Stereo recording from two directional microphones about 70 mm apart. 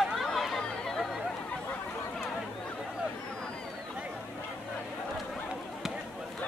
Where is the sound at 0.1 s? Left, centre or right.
Centre.